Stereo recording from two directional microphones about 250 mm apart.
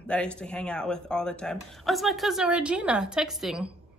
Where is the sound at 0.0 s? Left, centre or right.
Centre.